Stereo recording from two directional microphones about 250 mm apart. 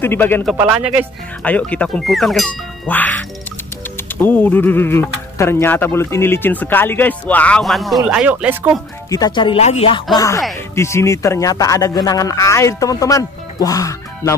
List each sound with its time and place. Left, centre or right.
0.0 s speech: centre
0.6 s speech: centre
9.1 s speech: centre